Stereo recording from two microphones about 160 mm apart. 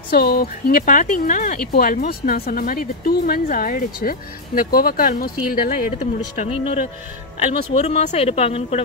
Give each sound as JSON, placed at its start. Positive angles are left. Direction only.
{"t": 0.1, "sound": "speech", "side_deg": 75}
{"t": 7.8, "sound": "speech", "side_deg": 45}